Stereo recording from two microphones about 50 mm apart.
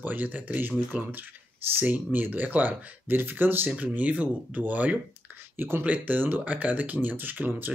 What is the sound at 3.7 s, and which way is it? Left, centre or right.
Speech, right.